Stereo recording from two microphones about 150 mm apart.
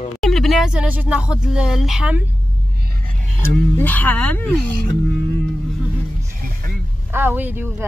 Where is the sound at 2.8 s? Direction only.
90° right.